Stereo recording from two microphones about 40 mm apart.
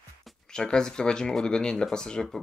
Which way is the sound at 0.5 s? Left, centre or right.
Centre.